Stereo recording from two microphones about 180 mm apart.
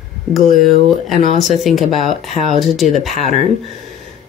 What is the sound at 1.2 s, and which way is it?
Speech, 40° left (ahead or behind).